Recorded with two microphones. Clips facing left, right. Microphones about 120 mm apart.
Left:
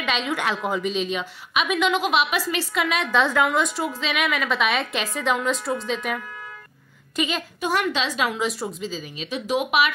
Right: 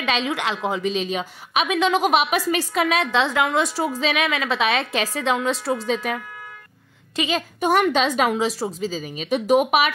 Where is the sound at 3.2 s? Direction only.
30° right (ahead or behind).